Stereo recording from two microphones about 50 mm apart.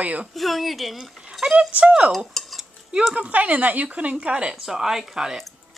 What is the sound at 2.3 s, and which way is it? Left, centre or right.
Dishes, centre.